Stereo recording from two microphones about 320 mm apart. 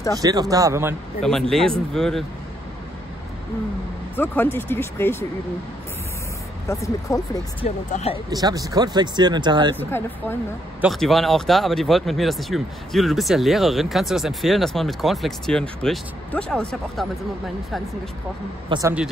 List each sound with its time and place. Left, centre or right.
0.2 s speech: centre
4.2 s speech: centre
6.7 s speech: centre
8.3 s speech: centre
9.8 s speech: centre
18.7 s speech: centre